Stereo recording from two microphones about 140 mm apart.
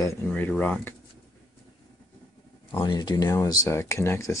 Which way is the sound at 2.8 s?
30° left (ahead or behind).